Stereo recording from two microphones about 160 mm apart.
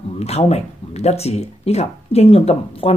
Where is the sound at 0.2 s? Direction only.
40° left (ahead or behind).